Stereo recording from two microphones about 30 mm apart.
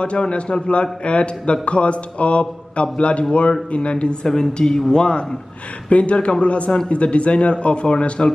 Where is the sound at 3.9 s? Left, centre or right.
Left.